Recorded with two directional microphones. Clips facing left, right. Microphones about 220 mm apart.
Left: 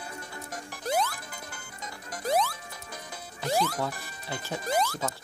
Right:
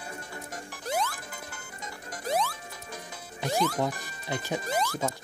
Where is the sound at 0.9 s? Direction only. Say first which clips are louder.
Left 2 dB; 40° left (ahead or behind).